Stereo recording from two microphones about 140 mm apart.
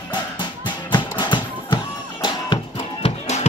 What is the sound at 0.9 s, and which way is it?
Music, 30° left (ahead or behind).